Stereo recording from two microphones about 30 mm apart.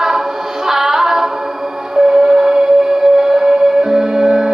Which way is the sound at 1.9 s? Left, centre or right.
Right.